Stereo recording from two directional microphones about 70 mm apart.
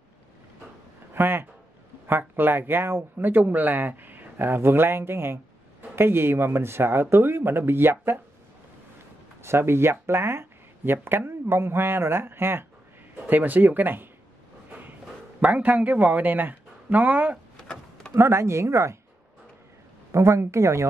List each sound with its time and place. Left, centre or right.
1.1 s speech: right
9.4 s speech: right
14.7 s a sound: right
15.4 s speech: right
18.1 s speech: right
20.1 s speech: right